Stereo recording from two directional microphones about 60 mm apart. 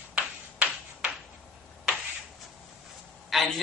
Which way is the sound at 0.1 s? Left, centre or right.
Right.